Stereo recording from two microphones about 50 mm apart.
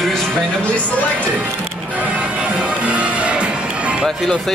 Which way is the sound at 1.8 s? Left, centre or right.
Right.